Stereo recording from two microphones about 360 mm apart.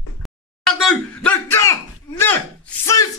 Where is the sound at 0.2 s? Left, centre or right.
Centre.